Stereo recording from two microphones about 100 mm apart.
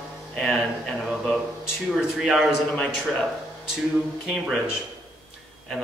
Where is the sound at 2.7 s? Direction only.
10° left (ahead or behind).